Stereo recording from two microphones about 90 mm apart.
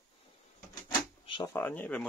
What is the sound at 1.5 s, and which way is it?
Speech, 20° left (ahead or behind).